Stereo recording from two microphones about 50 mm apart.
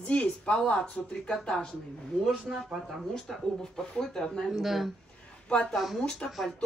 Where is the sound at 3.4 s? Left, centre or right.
Centre.